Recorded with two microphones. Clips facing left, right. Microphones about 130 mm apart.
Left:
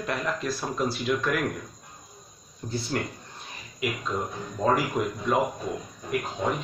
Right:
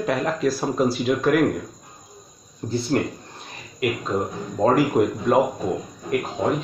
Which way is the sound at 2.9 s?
45° right (ahead or behind).